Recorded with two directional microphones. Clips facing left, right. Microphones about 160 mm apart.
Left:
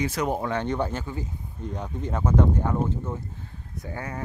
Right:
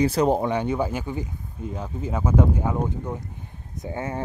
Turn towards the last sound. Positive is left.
turn(degrees=-25)  # may be behind; listen again after turning